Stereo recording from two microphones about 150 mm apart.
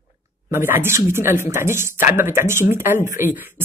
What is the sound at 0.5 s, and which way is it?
Speech, 15° right (ahead or behind).